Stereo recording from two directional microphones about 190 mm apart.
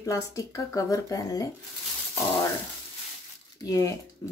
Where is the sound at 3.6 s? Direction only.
20° left (ahead or behind).